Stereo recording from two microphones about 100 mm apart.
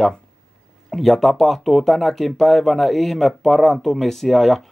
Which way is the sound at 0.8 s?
Centre (ahead or behind).